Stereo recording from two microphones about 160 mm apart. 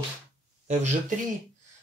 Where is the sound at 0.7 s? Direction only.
45° right (ahead or behind).